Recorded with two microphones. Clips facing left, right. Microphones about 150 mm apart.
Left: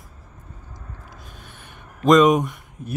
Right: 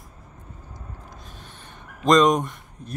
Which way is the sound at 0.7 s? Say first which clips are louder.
Even; 5° left (ahead or behind).